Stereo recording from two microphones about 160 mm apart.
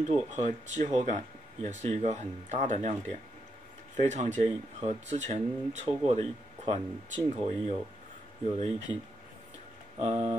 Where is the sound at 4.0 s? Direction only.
50° right (ahead or behind).